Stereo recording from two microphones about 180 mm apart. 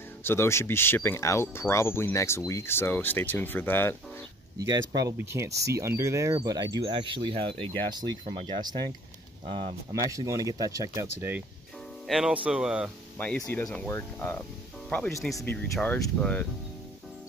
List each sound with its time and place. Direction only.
0.2 s speech: 15° left (ahead or behind)
4.6 s speech: 20° right (ahead or behind)
10.1 s speech: 20° right (ahead or behind)
13.4 s speech: 10° left (ahead or behind)